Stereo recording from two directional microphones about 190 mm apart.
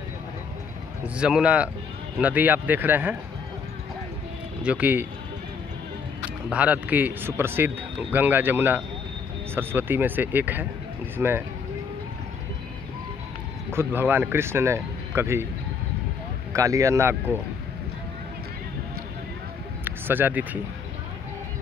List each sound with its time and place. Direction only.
1.0 s speech: 5° right (ahead or behind)
4.6 s speech: 10° right (ahead or behind)
6.5 s speech: 5° right (ahead or behind)
13.7 s speech: 10° right (ahead or behind)
16.5 s speech: 15° right (ahead or behind)
19.8 s speech: 10° right (ahead or behind)